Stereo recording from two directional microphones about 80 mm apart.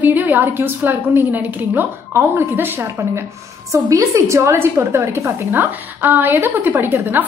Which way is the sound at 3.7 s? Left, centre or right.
Right.